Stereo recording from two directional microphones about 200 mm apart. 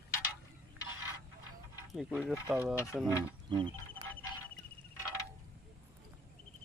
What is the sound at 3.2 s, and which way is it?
Speech, 25° right (ahead or behind).